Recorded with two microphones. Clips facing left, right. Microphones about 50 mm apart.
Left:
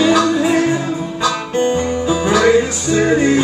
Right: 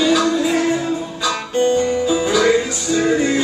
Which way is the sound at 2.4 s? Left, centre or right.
Left.